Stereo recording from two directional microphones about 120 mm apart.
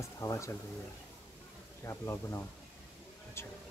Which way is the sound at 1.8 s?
25° left (ahead or behind).